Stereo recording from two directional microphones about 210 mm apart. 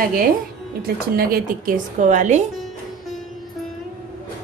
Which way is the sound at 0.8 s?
45° right (ahead or behind).